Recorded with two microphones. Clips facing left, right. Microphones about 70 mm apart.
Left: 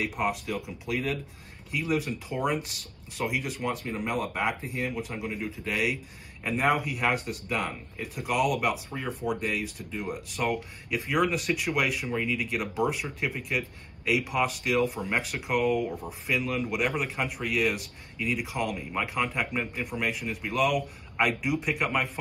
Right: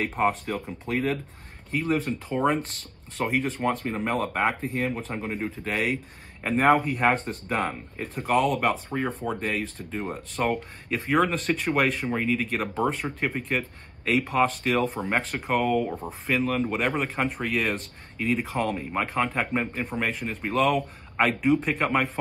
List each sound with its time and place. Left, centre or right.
0.0 s speech: right